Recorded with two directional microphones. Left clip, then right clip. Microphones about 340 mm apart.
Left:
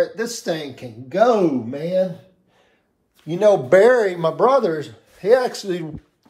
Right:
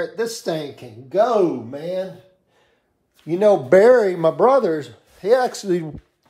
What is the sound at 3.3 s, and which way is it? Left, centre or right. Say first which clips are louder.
Speech: even; right.